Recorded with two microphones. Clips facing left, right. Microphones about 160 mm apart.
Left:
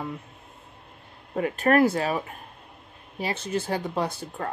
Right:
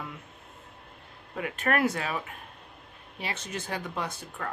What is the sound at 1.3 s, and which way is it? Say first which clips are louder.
Speech: left 7 dB; 35° left (ahead or behind).